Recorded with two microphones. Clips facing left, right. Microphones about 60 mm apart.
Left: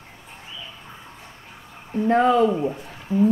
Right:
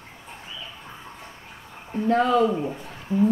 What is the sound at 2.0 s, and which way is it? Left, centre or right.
Speech, left.